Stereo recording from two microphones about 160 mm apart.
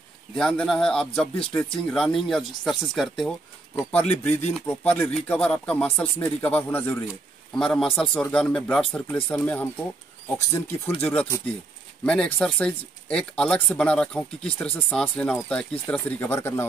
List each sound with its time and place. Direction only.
0.4 s a man's voice: 5° left (ahead or behind)